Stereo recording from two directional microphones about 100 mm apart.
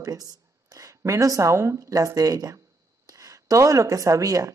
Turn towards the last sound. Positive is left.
turn(degrees=-35)  # may be behind; listen again after turning